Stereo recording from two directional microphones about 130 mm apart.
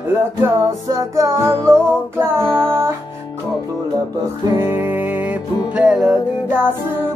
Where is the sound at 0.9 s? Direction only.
25° right (ahead or behind).